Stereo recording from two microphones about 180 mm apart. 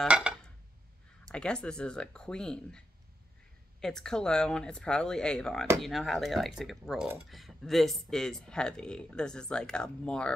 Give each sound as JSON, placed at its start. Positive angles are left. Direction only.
{"t": 0.0, "sound": "a sound", "side_deg": -5}
{"t": 1.3, "sound": "speech", "side_deg": 5}
{"t": 3.8, "sound": "speech", "side_deg": 5}